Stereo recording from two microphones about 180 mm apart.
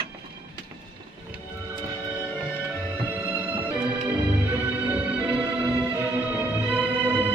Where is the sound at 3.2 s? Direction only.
10° right (ahead or behind).